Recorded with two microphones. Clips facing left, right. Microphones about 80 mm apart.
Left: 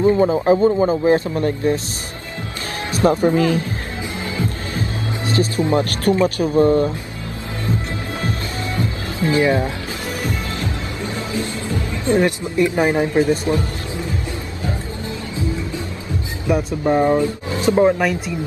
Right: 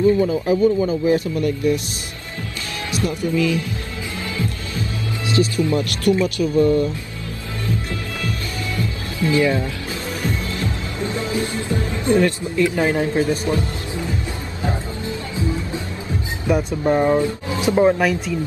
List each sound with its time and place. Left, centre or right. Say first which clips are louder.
0.0 s a man's voice: left 2 dB; left
2.9 s a man's voice: left 7 dB; left
4.7 s speech: even; left
8.2 s music: left 2 dB; left
12.1 s speech: even; left
16.5 s speech: left 1 dB; centre